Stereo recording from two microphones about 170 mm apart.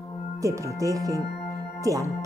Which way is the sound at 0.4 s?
20° right (ahead or behind).